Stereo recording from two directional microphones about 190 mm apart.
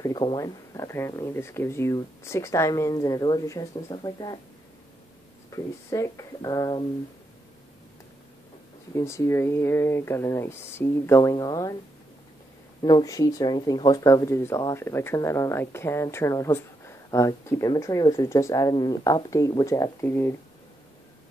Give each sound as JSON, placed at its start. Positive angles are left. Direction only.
{"t": 0.0, "sound": "speech", "side_deg": 20}
{"t": 5.5, "sound": "speech", "side_deg": 15}
{"t": 8.9, "sound": "speech", "side_deg": 15}
{"t": 12.8, "sound": "speech", "side_deg": 20}